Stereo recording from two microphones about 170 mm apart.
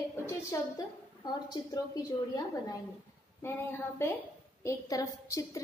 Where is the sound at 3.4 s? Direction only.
15° left (ahead or behind).